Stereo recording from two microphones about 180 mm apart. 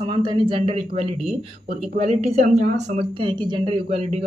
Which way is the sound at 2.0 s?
35° right (ahead or behind).